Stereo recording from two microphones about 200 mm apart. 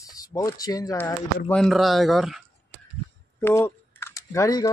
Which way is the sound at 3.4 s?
10° left (ahead or behind).